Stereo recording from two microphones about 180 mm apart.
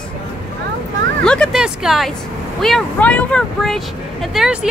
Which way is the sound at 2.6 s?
5° left (ahead or behind).